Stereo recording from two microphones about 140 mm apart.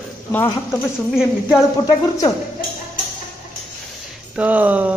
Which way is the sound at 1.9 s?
25° left (ahead or behind).